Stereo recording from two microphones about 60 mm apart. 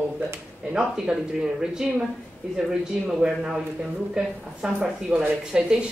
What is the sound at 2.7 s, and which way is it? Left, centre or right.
A woman's voice, centre.